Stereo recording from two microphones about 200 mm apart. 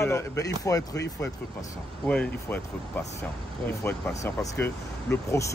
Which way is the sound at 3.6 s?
15° left (ahead or behind).